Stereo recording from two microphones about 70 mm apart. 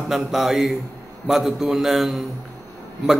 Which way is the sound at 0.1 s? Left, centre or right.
Centre.